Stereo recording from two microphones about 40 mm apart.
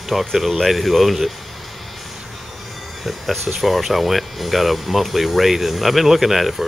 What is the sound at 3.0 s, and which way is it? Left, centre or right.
Speech, centre.